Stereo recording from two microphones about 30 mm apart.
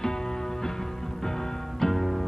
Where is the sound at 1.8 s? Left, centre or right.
Centre.